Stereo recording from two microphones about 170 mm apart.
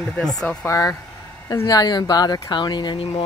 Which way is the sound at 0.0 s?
Centre (ahead or behind).